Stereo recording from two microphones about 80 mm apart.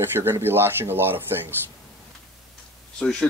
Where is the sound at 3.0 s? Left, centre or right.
Centre.